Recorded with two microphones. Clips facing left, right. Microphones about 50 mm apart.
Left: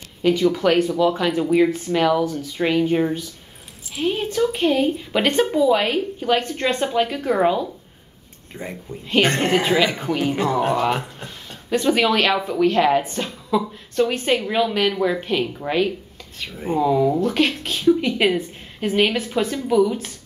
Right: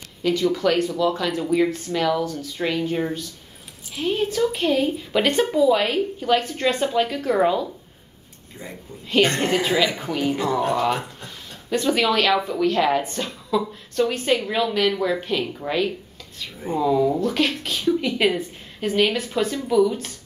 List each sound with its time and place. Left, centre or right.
0.2 s a woman's voice: centre
3.9 s a woman's voice: centre
8.6 s a woman's voice: left; by 20.1 s centre